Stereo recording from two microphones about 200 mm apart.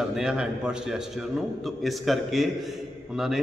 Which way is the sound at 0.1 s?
5° right (ahead or behind).